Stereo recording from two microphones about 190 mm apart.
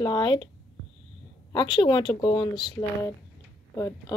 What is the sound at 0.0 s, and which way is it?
Speech, 25° left (ahead or behind).